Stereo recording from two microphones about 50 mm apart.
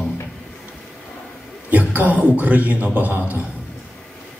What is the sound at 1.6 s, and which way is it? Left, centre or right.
A man's voice, right.